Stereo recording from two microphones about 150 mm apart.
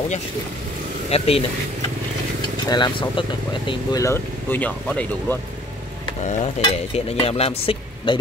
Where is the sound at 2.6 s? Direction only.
25° left (ahead or behind).